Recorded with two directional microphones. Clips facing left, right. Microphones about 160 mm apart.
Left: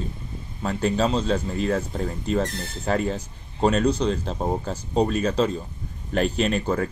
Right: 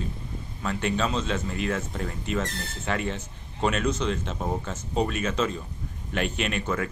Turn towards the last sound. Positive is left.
turn(degrees=35)  # may be behind; listen again after turning